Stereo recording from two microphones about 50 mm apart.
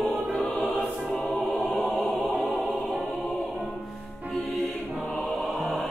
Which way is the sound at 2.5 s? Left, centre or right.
Right.